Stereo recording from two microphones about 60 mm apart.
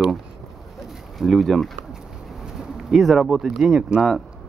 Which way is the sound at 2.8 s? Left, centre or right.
Centre.